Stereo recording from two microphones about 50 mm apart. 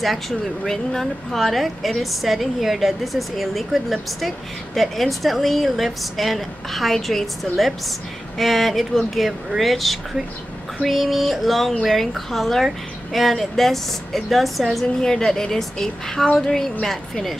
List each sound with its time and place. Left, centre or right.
0.7 s a woman's voice: centre